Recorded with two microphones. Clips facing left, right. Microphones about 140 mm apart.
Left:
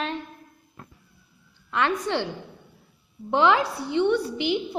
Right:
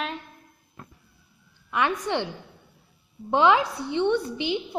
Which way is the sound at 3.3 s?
15° right (ahead or behind).